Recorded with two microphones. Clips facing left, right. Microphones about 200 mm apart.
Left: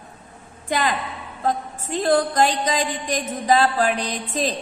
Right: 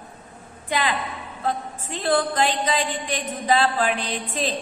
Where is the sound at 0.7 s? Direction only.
45° left (ahead or behind).